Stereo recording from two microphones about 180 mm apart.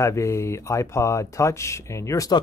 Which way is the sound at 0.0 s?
15° left (ahead or behind).